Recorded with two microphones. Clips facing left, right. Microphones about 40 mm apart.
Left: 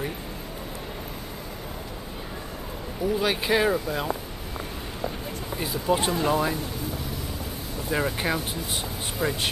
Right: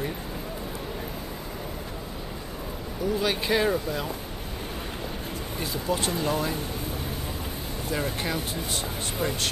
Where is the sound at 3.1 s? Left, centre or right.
Centre.